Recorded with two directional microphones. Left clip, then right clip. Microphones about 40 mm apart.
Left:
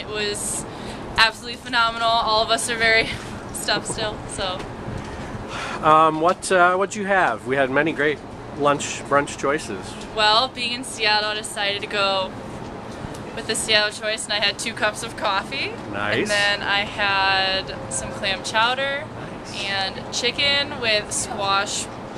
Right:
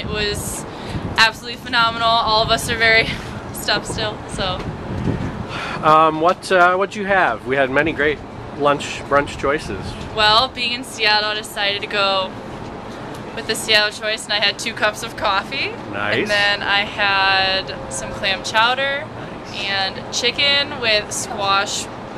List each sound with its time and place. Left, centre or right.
0.1 s vehicle: centre
1.1 s speech: centre
5.6 s a sound: centre
6.5 s speech: centre
10.1 s speech: centre
13.5 s speech: centre
16.2 s speech: centre
16.4 s speech: centre